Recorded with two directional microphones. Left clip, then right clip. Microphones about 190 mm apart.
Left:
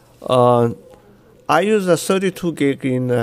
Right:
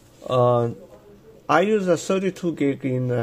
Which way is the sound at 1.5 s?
25° left (ahead or behind).